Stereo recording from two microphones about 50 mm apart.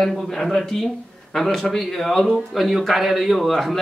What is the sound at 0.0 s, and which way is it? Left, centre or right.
Speech, centre.